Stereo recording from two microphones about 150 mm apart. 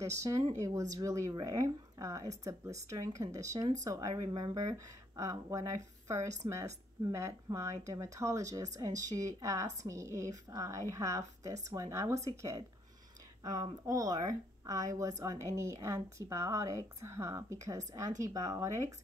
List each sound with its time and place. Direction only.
0.0 s speech: 20° right (ahead or behind)